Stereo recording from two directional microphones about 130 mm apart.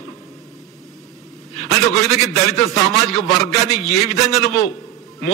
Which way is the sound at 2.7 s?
5° left (ahead or behind).